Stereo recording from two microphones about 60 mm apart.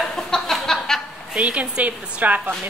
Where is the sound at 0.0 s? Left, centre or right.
Centre.